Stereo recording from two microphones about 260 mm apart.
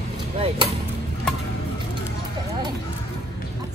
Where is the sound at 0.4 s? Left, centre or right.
Right.